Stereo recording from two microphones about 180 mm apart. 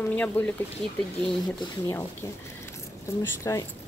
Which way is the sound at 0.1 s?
10° left (ahead or behind).